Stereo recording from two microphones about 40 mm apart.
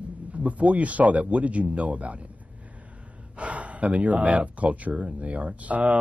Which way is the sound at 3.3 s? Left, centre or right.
Right.